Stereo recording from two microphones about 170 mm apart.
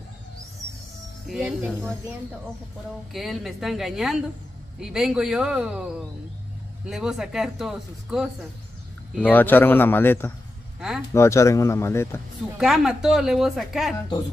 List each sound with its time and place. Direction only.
1.3 s speech: 5° right (ahead or behind)
3.1 s speech: centre (ahead or behind)
6.9 s speech: 5° right (ahead or behind)
9.2 s speech: 10° left (ahead or behind)
12.5 s speech: 5° right (ahead or behind)